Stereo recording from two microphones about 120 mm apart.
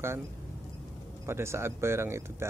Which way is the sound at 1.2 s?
20° right (ahead or behind).